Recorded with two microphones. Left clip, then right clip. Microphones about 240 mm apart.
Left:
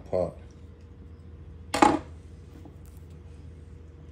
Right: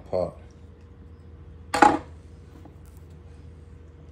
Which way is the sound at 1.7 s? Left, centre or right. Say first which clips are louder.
Right 3 dB; centre.